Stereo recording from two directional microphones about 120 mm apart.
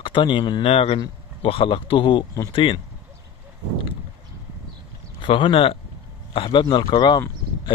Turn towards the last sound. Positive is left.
turn(degrees=35)  # may be behind; listen again after turning